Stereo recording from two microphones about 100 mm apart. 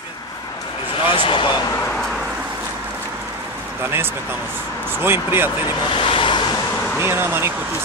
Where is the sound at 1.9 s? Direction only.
5° left (ahead or behind).